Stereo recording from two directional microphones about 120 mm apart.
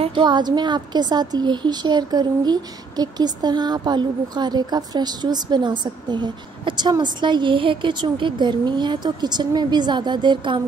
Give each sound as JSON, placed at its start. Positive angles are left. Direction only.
{"t": 0.0, "sound": "a woman's voice", "side_deg": -40}